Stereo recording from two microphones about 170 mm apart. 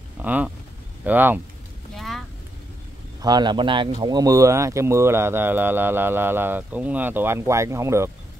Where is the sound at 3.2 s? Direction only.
25° right (ahead or behind).